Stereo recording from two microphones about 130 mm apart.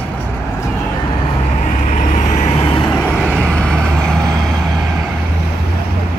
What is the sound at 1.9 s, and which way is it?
Vehicle, 70° left (ahead or behind).